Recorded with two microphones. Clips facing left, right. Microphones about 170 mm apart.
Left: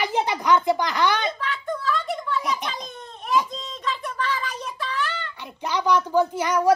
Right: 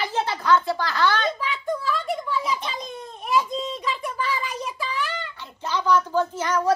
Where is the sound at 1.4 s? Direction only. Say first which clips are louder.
Right 1 dB; 5° right (ahead or behind).